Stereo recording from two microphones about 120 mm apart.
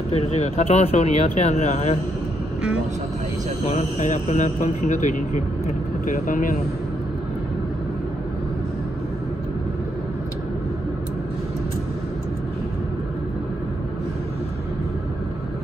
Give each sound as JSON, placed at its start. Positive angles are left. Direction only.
{"t": 0.1, "sound": "speech", "side_deg": 65}
{"t": 3.6, "sound": "a man's voice", "side_deg": 70}